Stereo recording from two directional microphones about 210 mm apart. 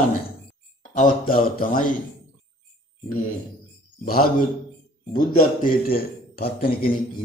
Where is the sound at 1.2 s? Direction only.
40° left (ahead or behind).